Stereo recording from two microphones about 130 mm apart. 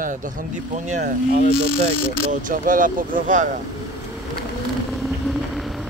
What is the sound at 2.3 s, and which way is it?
Speech, 90° right.